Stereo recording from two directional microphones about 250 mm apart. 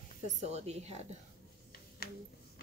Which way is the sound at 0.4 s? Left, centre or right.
Right.